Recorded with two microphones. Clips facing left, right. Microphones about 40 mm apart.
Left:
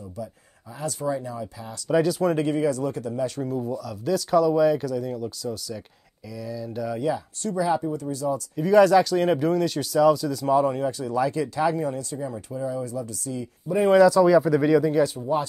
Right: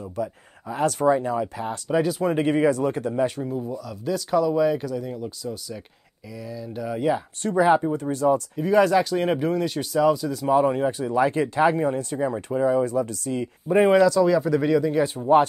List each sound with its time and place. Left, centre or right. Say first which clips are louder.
0.0 s speech: right 6 dB; right
1.9 s speech: left 2 dB; centre
2.4 s speech: right 3 dB; right
3.3 s speech: left 1 dB; centre
7.0 s speech: right 7 dB; right
8.5 s speech: left 6 dB; centre
10.5 s speech: right 2 dB; right
12.1 s speech: right 6 dB; right
13.9 s speech: left 2 dB; centre
15.1 s speech: right 8 dB; right